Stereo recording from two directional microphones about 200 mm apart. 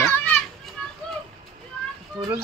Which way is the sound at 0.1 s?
5° left (ahead or behind).